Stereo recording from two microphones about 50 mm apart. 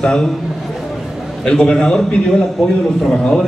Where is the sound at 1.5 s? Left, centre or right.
Centre.